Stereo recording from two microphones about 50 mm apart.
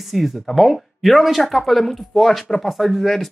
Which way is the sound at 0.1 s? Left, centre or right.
Centre.